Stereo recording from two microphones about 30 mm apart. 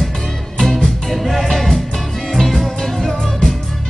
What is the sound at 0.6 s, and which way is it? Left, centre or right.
Music, centre.